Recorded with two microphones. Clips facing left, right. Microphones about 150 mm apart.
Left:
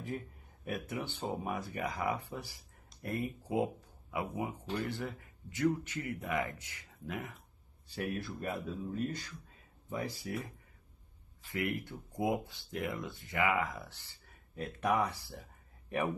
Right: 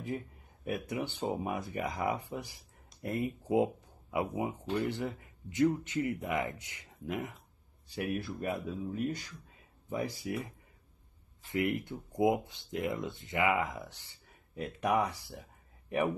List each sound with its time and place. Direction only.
0.7 s speech: 20° right (ahead or behind)